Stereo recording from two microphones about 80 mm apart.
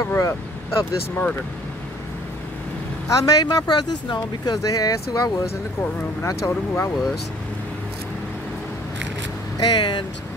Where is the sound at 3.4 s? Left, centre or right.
Left.